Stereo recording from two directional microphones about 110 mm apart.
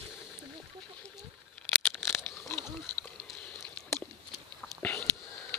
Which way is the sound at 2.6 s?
40° right (ahead or behind).